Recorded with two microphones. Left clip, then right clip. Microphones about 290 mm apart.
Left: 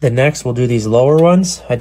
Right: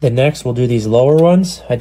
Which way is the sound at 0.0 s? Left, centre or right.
Centre.